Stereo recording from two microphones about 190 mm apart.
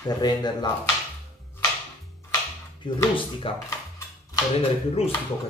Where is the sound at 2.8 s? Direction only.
25° left (ahead or behind).